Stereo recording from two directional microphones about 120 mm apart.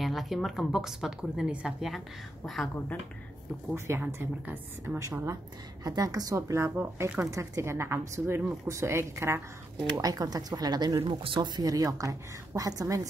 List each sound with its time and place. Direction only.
0.0 s speech: centre (ahead or behind)
3.7 s a woman's voice: 20° right (ahead or behind)
11.0 s speech: 45° right (ahead or behind); by 13.1 s 30° right (ahead or behind)